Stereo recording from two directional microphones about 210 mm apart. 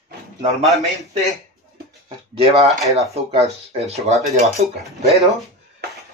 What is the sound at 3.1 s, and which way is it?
Speech, 30° right (ahead or behind).